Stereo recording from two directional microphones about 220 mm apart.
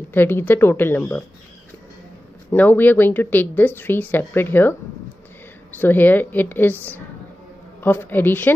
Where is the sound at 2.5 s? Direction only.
10° left (ahead or behind).